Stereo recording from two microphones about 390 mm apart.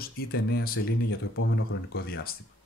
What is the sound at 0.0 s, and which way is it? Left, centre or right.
Speech, left.